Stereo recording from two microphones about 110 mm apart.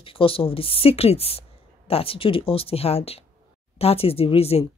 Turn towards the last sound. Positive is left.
turn(degrees=65)  # may be behind; listen again after turning